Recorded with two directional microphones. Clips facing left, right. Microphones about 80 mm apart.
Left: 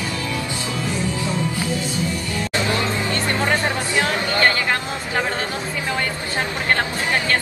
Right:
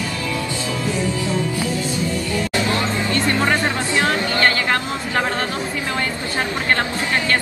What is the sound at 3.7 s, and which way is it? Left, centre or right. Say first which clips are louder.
Music: right 2 dB; left.